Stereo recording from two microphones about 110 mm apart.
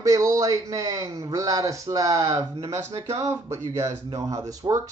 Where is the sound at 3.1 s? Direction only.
30° right (ahead or behind).